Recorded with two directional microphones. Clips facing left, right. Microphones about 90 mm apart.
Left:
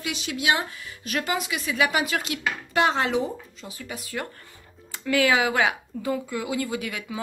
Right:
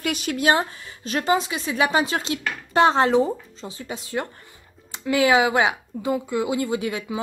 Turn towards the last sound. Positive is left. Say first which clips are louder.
# right 5 dB
turn(degrees=-25)  # may be behind; listen again after turning